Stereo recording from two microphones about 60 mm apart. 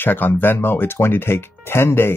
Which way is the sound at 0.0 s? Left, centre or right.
Left.